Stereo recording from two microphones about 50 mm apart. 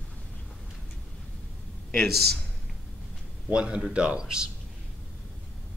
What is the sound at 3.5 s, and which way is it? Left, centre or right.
A man's voice, centre.